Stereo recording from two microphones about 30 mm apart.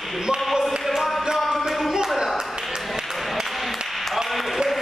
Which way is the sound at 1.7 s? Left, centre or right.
Centre.